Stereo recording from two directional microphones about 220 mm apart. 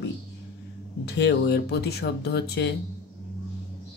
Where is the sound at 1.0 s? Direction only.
50° left (ahead or behind).